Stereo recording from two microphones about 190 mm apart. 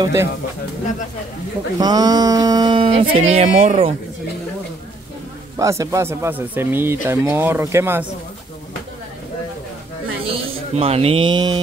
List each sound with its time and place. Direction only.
0.0 s speech: 15° right (ahead or behind)
1.8 s speech: 20° right (ahead or behind)
5.6 s speech: 15° right (ahead or behind)
10.2 s speech: 30° right (ahead or behind)